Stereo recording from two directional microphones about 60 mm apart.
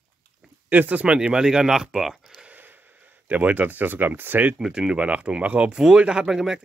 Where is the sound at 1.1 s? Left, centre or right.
Centre.